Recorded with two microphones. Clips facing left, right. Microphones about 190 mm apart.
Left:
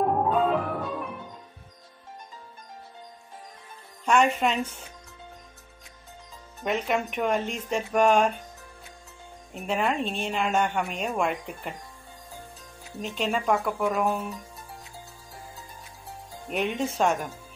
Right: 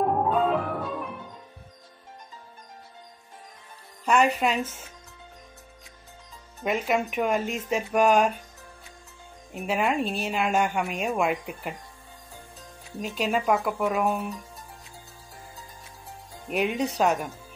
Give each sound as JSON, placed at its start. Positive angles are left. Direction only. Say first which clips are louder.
{"t": 0.0, "sound": "music", "louder": "even", "side_deg": 0}
{"t": 4.0, "sound": "speech", "louder": "even", "side_deg": 0}
{"t": 6.6, "sound": "a woman's voice", "louder": "right 1 dB", "side_deg": -5}
{"t": 9.5, "sound": "a woman's voice", "louder": "right 1 dB", "side_deg": -5}
{"t": 13.0, "sound": "a woman's voice", "louder": "right 1 dB", "side_deg": -5}
{"t": 16.4, "sound": "a woman's voice", "louder": "right 2 dB", "side_deg": -5}